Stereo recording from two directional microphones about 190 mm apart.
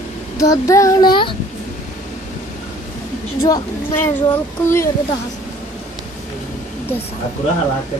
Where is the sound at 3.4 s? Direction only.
15° left (ahead or behind).